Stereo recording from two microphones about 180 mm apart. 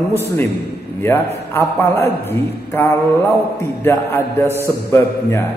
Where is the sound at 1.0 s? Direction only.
15° left (ahead or behind).